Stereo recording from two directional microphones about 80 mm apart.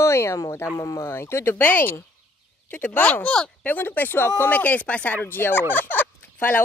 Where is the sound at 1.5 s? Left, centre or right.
Left.